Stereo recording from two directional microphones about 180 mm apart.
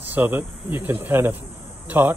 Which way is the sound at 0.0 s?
10° right (ahead or behind).